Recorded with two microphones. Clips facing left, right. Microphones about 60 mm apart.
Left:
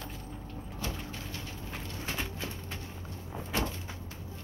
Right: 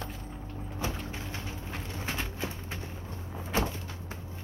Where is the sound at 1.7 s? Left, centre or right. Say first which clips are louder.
Right 1 dB; centre.